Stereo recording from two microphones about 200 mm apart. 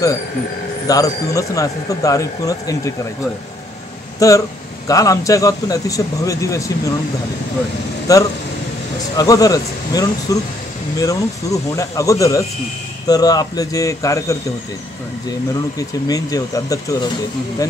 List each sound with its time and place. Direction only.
0.8 s speech: 15° left (ahead or behind)
4.2 s speech: 15° left (ahead or behind)
8.1 s speech: 15° left (ahead or behind)
16.1 s speech: 20° left (ahead or behind)